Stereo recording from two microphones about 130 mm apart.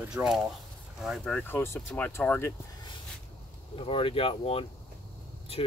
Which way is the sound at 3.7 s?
45° left (ahead or behind).